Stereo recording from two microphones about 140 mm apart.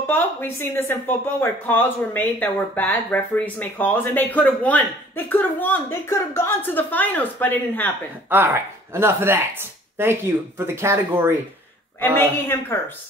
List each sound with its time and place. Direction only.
0.0 s a woman's voice: 15° left (ahead or behind)
8.9 s speech: 15° right (ahead or behind)
12.0 s a woman's voice: 15° left (ahead or behind)